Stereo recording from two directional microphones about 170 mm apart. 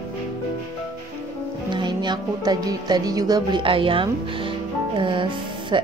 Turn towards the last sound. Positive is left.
turn(degrees=-30)  # may be behind; listen again after turning